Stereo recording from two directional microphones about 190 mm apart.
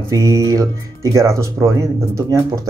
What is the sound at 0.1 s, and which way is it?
Speech, 15° right (ahead or behind).